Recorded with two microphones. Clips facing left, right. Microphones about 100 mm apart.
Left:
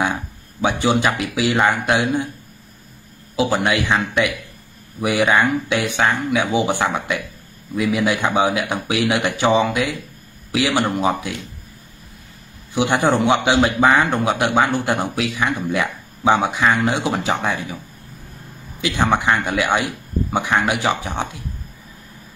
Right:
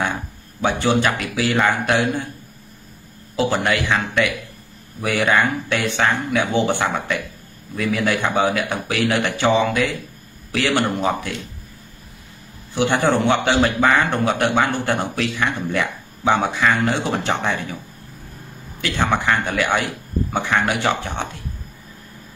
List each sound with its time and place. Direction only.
0.0 s a man's voice: 15° left (ahead or behind)
3.3 s a man's voice: 15° left (ahead or behind)
12.7 s a man's voice: 15° left (ahead or behind)
18.8 s a man's voice: 15° left (ahead or behind)